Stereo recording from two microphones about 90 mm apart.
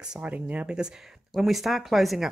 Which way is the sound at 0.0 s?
10° right (ahead or behind).